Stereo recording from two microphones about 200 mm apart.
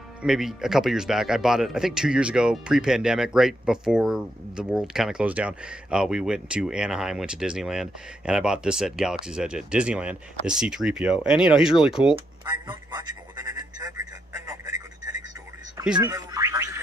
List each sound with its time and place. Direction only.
0.2 s speech: centre (ahead or behind)
12.6 s telephone: 20° right (ahead or behind)
16.0 s music: 15° right (ahead or behind)